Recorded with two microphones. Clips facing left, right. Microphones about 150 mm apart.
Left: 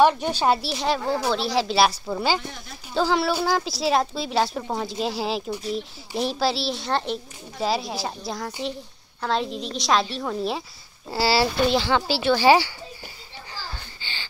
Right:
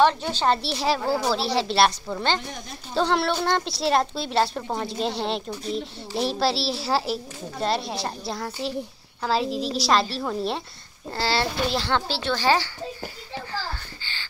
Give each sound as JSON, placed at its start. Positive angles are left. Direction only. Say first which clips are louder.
{"t": 0.0, "sound": "speech", "louder": "left 2 dB", "side_deg": 10}
{"t": 0.6, "sound": "a woman's voice", "louder": "even", "side_deg": 0}
{"t": 14.0, "sound": "a sound", "louder": "left 4 dB", "side_deg": 15}